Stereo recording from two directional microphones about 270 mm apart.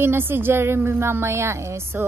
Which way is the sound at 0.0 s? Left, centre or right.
Centre.